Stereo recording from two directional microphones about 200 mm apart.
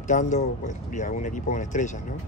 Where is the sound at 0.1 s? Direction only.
35° left (ahead or behind).